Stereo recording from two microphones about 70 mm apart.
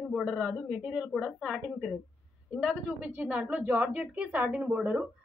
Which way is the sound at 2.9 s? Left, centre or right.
Centre.